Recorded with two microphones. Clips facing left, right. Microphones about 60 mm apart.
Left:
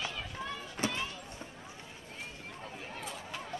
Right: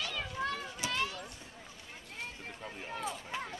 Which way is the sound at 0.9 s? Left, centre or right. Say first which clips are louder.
Right 3 dB; right.